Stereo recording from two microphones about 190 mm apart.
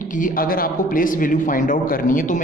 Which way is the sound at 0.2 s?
50° left (ahead or behind).